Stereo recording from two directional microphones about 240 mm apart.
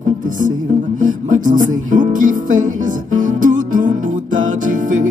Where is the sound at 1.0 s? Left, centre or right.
Right.